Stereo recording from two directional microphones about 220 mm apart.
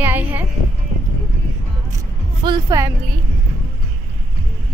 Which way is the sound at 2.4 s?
20° right (ahead or behind).